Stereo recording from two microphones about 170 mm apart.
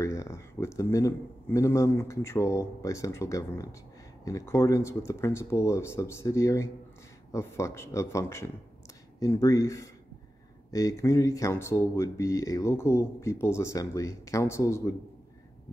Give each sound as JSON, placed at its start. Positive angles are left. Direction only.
{"t": 0.0, "sound": "speech", "side_deg": 15}